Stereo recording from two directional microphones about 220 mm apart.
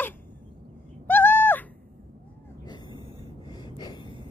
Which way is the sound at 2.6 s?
20° left (ahead or behind).